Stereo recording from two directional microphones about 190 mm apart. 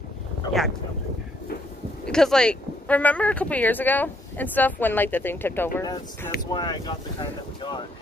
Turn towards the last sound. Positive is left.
turn(degrees=25)  # may be behind; listen again after turning